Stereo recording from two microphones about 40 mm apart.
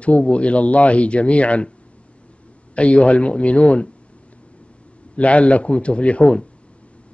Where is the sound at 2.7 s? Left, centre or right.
Left.